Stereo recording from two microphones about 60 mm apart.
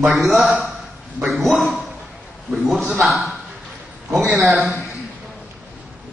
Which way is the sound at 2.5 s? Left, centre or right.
Right.